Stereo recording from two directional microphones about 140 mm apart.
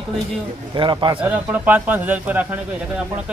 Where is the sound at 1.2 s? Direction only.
10° right (ahead or behind).